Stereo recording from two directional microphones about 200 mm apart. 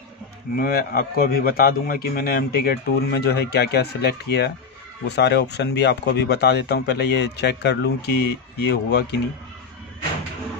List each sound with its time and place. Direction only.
0.6 s a man's voice: 50° left (ahead or behind)